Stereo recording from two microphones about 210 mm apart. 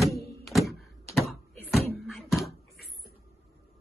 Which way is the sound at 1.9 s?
Centre (ahead or behind).